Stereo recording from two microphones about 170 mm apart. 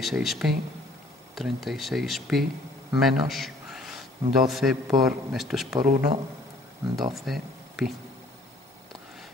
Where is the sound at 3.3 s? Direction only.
Centre (ahead or behind).